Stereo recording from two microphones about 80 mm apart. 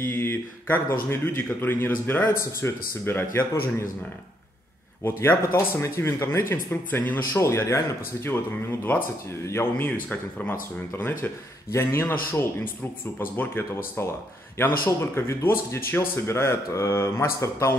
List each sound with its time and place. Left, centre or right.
0.0 s a man's voice: left
5.0 s a man's voice: left
7.3 s speech: left
9.5 s a man's voice: left